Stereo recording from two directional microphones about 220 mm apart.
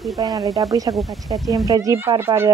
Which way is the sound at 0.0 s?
Centre (ahead or behind).